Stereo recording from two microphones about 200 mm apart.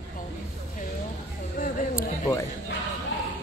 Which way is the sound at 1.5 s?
45° left (ahead or behind).